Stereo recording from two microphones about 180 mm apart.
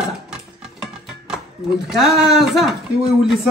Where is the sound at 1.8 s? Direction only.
Centre (ahead or behind).